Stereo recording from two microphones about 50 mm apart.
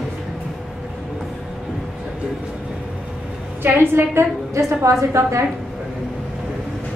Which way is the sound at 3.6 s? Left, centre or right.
Right.